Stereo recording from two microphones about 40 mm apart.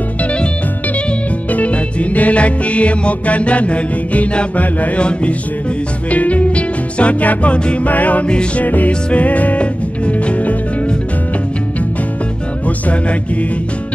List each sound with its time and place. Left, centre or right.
0.2 s music: left
1.5 s music: left
6.0 s music: left
7.8 s music: left
12.6 s music: left